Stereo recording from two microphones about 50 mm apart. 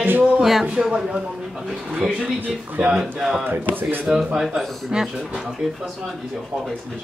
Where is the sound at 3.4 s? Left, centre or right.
Right.